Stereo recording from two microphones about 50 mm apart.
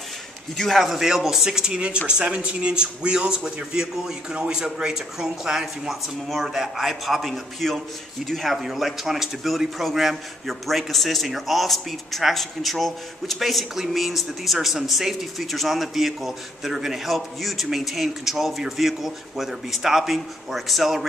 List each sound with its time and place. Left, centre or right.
0.6 s a man's voice: centre
0.8 s a man's voice: centre